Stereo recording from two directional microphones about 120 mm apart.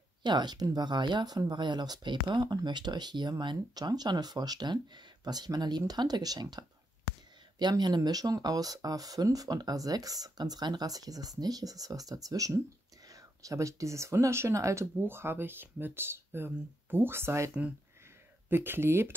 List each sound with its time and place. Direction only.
0.2 s speech: 35° right (ahead or behind); by 19.1 s 20° right (ahead or behind)